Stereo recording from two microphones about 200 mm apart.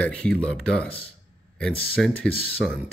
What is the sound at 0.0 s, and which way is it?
Speech, 5° left (ahead or behind).